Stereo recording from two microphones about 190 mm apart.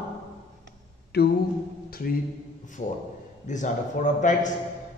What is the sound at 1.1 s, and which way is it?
Mantra, 55° left (ahead or behind).